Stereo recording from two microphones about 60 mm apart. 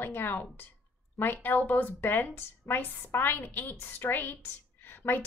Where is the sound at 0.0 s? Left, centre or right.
Left.